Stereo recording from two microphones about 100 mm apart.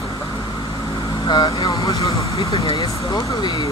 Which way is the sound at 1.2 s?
50° left (ahead or behind).